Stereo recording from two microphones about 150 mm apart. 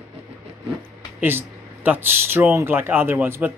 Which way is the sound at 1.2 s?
15° right (ahead or behind).